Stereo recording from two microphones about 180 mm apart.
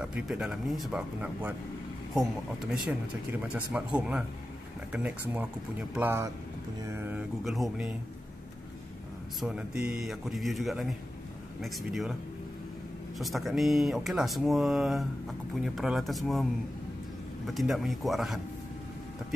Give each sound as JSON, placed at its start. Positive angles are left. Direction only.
{"t": 0.0, "sound": "speech", "side_deg": -5}
{"t": 9.4, "sound": "speech", "side_deg": -5}
{"t": 13.2, "sound": "speech", "side_deg": 0}
{"t": 17.5, "sound": "speech", "side_deg": 0}